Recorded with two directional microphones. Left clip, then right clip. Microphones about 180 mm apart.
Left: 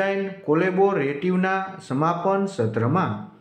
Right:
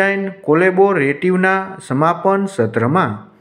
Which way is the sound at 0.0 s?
25° right (ahead or behind).